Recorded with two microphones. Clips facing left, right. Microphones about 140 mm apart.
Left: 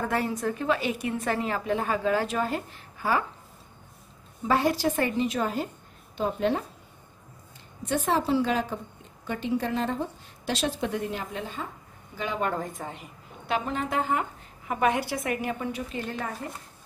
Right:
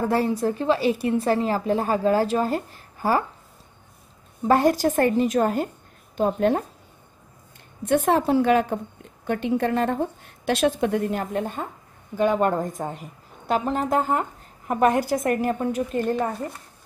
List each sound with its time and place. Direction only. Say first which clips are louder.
0.0 s a woman's voice: right 6 dB; 35° right (ahead or behind)
4.5 s a woman's voice: right 5 dB; 45° right (ahead or behind)
7.8 s a woman's voice: right 6 dB; 55° right (ahead or behind)